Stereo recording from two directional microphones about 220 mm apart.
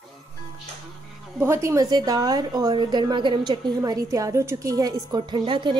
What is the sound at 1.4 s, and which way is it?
A woman's voice, 10° right (ahead or behind).